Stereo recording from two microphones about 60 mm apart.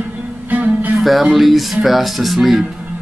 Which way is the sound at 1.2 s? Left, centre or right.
Centre.